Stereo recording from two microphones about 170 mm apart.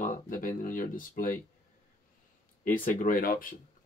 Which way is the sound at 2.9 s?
55° left (ahead or behind).